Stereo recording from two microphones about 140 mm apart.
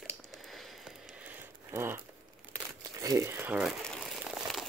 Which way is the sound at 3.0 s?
25° right (ahead or behind).